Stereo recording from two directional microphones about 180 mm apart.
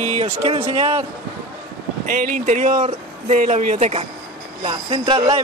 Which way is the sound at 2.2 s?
45° right (ahead or behind).